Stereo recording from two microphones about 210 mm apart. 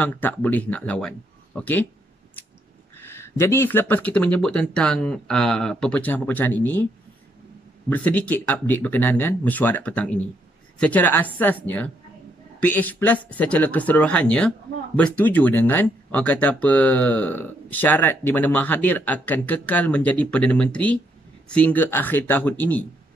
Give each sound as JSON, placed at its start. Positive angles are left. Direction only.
{"t": 0.0, "sound": "speech", "side_deg": 10}
{"t": 3.0, "sound": "speech", "side_deg": 10}
{"t": 7.9, "sound": "speech", "side_deg": 5}